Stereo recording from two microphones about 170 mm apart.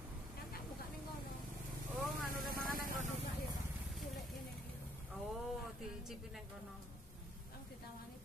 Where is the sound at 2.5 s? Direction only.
55° right (ahead or behind).